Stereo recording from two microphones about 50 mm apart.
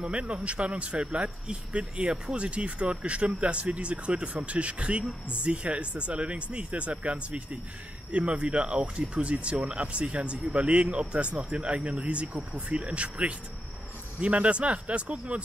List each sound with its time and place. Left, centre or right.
0.0 s speech: right